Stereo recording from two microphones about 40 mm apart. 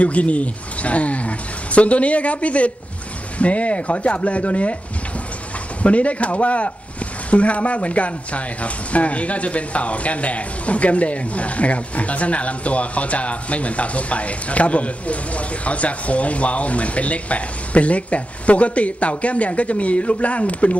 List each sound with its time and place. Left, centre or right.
0.0 s speech: left
5.8 s speech: left